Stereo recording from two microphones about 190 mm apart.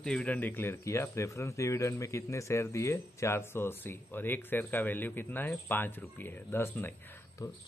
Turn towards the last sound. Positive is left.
turn(degrees=20)  # may be behind; listen again after turning